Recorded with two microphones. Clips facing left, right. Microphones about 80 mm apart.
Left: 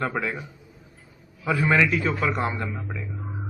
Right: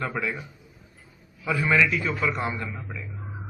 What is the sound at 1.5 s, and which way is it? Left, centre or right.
A man's voice, left.